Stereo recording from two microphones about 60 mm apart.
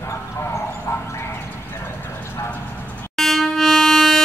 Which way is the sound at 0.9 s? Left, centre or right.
Left.